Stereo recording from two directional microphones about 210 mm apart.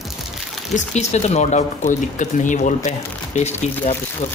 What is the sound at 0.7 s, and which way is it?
Speech, 30° left (ahead or behind).